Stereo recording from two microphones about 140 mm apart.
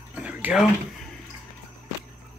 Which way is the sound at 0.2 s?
10° right (ahead or behind).